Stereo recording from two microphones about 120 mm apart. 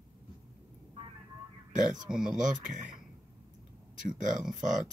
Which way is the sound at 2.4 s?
90° right.